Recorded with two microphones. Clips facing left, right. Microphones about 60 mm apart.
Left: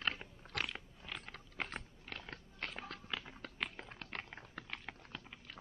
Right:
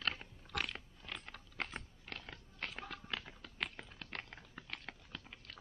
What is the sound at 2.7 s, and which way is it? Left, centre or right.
Music, centre.